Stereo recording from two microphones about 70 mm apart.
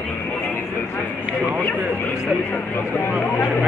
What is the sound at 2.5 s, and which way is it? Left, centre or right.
Speech, left.